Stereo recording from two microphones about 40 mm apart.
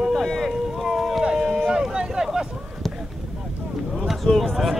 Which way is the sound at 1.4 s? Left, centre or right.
Centre.